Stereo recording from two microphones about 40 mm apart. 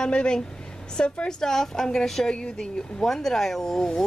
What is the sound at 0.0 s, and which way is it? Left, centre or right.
Speech, left.